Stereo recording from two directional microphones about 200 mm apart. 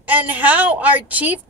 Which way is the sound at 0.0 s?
10° right (ahead or behind).